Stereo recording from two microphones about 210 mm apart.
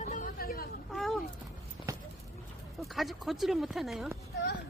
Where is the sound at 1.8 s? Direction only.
25° left (ahead or behind).